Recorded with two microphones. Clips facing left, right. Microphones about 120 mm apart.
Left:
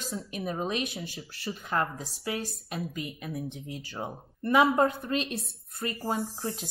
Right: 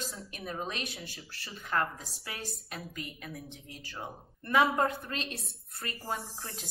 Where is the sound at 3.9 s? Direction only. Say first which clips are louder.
Left 1 dB; 25° left (ahead or behind).